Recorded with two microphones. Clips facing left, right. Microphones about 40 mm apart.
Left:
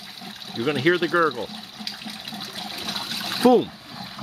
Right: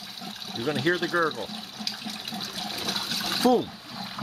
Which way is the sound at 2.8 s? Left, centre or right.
Centre.